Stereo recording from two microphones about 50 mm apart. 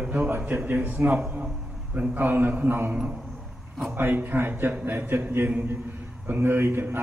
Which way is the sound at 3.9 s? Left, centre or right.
Right.